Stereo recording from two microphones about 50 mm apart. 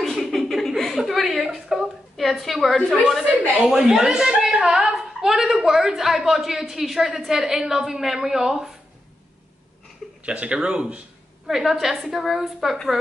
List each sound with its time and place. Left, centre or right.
0.0 s chuckle: centre
3.6 s a woman's voice: centre
10.2 s speech: right
11.4 s a woman's voice: centre